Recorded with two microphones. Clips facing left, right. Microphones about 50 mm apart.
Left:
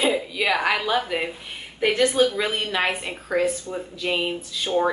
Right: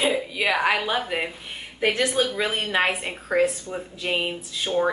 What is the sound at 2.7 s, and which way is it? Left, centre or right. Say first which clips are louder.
Speech: right 1 dB; right.